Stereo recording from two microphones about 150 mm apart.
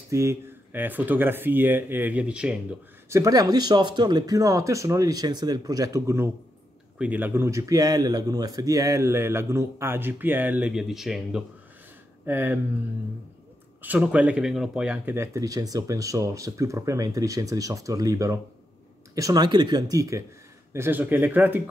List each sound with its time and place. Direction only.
0.1 s speech: 20° right (ahead or behind)
3.1 s speech: 20° right (ahead or behind); by 11.4 s centre (ahead or behind)
12.3 s speech: 15° right (ahead or behind)
13.7 s speech: 10° right (ahead or behind)
15.1 s speech: 20° right (ahead or behind)